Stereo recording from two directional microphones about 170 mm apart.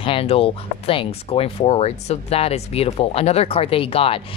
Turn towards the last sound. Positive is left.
turn(degrees=35)  # may be behind; listen again after turning